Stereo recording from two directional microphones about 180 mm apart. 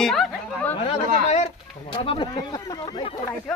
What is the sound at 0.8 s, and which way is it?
Speech, 35° left (ahead or behind).